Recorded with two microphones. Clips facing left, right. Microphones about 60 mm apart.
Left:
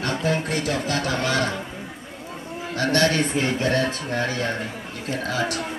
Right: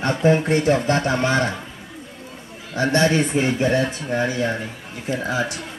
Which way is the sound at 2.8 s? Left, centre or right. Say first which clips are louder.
Right 3 dB; right.